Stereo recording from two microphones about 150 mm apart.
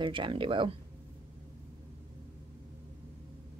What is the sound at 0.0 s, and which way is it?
Speech, 35° right (ahead or behind).